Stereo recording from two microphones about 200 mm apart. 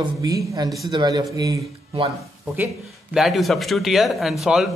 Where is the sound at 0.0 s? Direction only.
20° right (ahead or behind).